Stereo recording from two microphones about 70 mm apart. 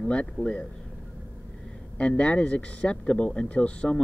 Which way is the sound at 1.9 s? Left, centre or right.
Centre.